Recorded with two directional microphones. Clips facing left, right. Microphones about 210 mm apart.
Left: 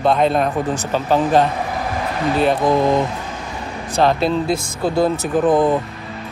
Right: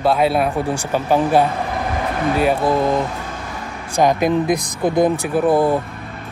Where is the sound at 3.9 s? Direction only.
15° right (ahead or behind).